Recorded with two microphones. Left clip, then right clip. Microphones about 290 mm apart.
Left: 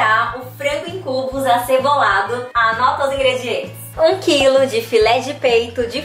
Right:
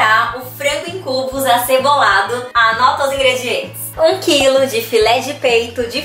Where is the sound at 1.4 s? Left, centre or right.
Centre.